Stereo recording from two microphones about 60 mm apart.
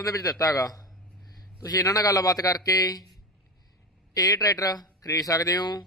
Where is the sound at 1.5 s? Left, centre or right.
Left.